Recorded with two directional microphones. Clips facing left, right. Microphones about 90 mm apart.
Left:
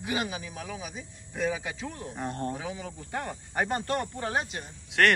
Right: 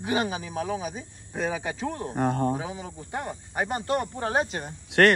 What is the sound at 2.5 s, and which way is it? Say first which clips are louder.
Speech: right 4 dB; 25° right (ahead or behind).